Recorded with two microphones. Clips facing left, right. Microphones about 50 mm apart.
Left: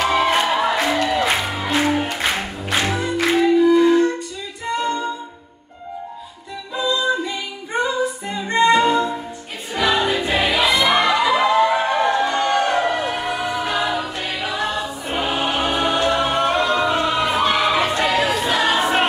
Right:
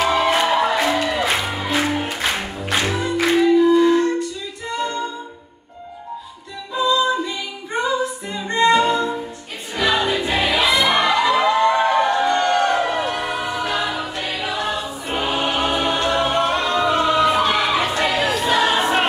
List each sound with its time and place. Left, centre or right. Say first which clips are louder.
0.0 s music: even; centre
2.8 s music: even; centre
8.3 s a capella: even; centre
9.8 s choir: even; centre